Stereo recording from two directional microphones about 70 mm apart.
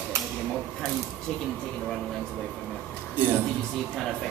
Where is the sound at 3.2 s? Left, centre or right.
Right.